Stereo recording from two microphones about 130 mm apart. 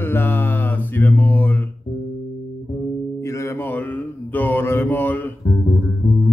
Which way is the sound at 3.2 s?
20° left (ahead or behind).